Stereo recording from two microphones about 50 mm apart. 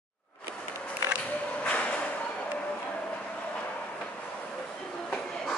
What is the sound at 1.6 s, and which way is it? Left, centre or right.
Music, left.